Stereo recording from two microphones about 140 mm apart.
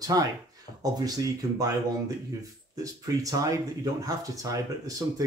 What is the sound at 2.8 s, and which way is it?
Speech, 25° right (ahead or behind).